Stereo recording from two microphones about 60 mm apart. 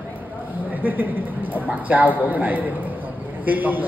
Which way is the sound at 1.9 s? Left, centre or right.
Right.